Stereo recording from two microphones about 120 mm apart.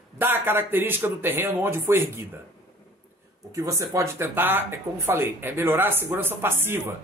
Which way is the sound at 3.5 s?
25° right (ahead or behind).